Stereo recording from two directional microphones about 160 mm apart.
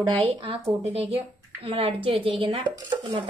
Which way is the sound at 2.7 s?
25° right (ahead or behind).